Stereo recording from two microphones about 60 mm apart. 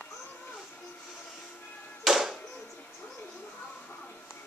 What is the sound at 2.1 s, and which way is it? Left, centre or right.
Music, centre.